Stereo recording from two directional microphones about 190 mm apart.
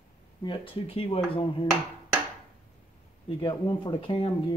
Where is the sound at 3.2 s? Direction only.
25° left (ahead or behind).